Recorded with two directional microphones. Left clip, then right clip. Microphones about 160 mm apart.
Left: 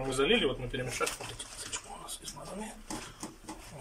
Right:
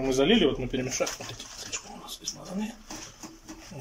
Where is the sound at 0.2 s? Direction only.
40° right (ahead or behind).